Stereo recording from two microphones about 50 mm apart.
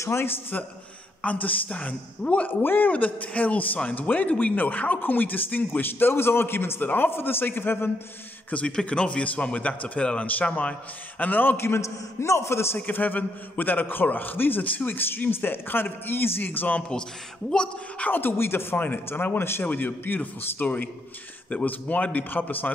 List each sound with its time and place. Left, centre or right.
1.2 s a man's voice: left
2.6 s a man's voice: left
2.9 s a man's voice: left
8.5 s a man's voice: left
11.5 s a man's voice: left
11.8 s a man's voice: left
12.7 s a man's voice: left
17.5 s a man's voice: left
18.1 s a man's voice: left
19.6 s speech: left
20.6 s a man's voice: left